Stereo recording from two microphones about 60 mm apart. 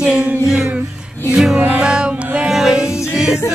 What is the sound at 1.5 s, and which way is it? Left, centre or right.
Music, right.